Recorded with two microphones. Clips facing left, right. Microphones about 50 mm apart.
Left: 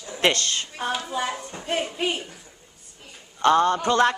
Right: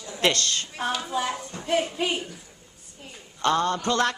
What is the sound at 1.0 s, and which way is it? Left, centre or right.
A woman's voice, centre.